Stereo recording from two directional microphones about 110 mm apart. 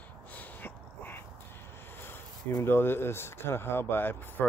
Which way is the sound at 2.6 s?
20° left (ahead or behind).